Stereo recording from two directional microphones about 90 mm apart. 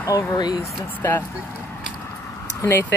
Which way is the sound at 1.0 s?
30° left (ahead or behind).